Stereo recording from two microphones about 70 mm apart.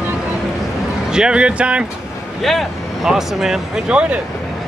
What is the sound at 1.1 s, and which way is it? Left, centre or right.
Speech, centre.